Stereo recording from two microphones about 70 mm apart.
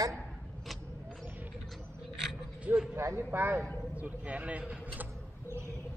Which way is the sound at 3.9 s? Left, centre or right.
Centre.